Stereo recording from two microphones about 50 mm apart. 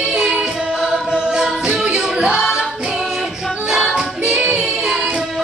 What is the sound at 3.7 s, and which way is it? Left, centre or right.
Music, centre.